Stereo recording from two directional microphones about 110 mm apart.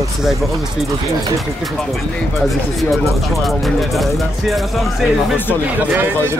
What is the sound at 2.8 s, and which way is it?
Speech, centre (ahead or behind).